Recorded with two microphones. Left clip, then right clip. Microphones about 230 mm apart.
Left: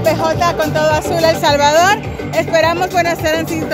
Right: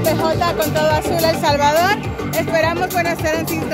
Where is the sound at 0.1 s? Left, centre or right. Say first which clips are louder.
Left 3 dB; centre.